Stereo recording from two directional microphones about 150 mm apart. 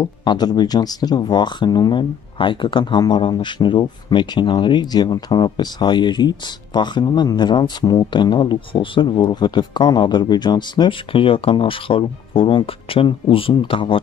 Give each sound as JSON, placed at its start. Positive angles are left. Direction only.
{"t": 0.0, "sound": "speech", "side_deg": 30}